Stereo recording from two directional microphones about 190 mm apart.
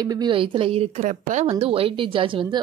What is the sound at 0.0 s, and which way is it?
Speech, 20° right (ahead or behind).